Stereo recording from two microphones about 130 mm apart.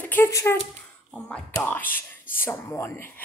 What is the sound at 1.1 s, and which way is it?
Speech, 5° left (ahead or behind).